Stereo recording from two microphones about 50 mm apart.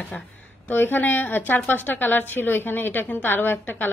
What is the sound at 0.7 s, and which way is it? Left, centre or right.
A woman's voice, left.